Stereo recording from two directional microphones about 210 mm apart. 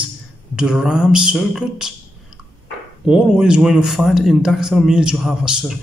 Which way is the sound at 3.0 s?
5° right (ahead or behind).